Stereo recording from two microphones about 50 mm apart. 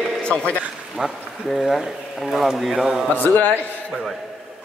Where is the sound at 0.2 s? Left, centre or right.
Centre.